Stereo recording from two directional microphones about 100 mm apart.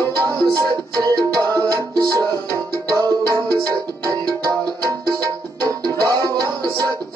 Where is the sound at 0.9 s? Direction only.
35° right (ahead or behind).